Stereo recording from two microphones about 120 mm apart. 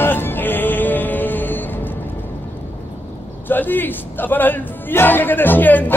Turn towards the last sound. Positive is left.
turn(degrees=15)  # may be behind; listen again after turning